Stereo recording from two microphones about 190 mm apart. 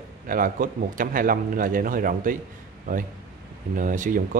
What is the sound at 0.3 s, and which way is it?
A man's voice, 50° right (ahead or behind).